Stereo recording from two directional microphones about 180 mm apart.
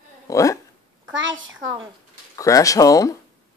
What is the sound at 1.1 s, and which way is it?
Speech, 90° right.